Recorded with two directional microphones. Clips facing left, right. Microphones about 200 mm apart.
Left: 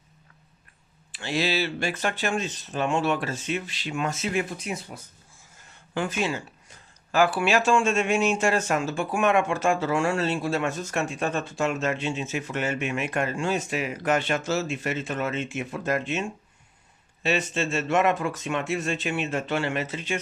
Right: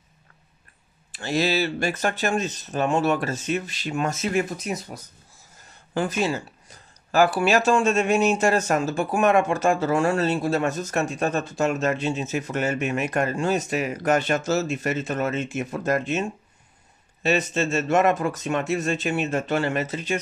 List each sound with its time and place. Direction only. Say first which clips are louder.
1.1 s speech: right 3 dB; 45° right (ahead or behind)